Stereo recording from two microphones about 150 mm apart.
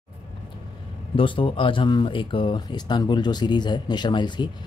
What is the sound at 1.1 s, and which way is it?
Speech, 35° left (ahead or behind).